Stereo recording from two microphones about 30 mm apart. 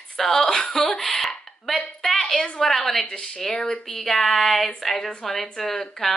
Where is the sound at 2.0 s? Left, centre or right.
Centre.